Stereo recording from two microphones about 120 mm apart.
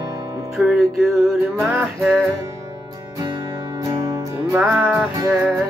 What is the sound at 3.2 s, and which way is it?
Music, 35° right (ahead or behind).